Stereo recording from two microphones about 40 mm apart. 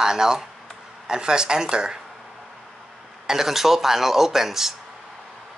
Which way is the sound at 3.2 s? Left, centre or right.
Centre.